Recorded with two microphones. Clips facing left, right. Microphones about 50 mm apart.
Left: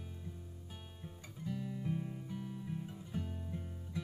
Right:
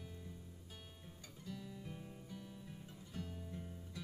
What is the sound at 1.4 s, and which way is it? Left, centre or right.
Music, left.